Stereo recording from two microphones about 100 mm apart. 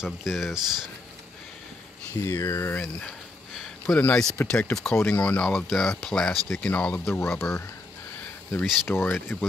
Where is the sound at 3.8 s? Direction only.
15° left (ahead or behind).